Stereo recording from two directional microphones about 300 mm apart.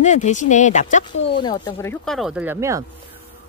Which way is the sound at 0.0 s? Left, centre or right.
Left.